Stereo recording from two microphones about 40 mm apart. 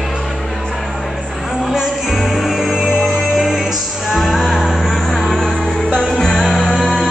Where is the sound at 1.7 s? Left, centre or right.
Centre.